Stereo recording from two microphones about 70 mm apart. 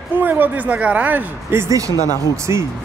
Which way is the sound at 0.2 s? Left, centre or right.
Right.